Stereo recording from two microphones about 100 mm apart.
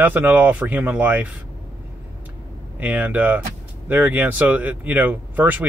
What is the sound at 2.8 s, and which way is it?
Speech, 20° right (ahead or behind).